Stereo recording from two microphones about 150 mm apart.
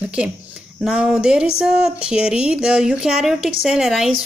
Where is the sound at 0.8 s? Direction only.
5° right (ahead or behind).